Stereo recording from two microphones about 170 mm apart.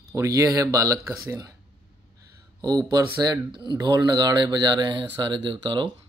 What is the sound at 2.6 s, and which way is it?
Speech, 25° right (ahead or behind).